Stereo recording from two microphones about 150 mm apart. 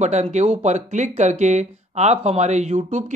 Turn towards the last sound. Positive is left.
turn(degrees=-55)  # may be behind; listen again after turning